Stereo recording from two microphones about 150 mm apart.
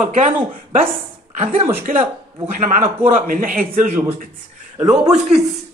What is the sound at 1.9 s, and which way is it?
Speech, 65° right (ahead or behind).